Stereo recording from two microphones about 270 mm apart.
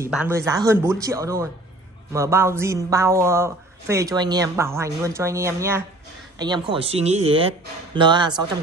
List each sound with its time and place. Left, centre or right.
0.0 s speech: centre